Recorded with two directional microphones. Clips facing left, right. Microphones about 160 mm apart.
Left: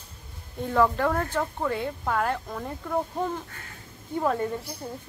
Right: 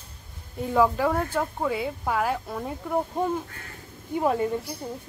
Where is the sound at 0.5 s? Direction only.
10° right (ahead or behind).